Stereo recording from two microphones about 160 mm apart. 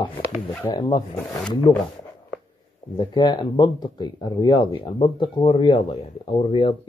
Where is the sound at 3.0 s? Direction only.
25° left (ahead or behind).